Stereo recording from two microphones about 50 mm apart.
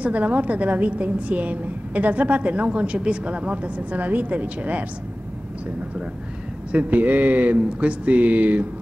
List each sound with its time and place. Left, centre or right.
0.0 s a woman's voice: right
6.7 s speech: right